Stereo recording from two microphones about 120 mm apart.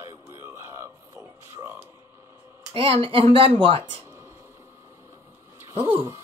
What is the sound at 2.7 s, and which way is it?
Speech, 50° right (ahead or behind).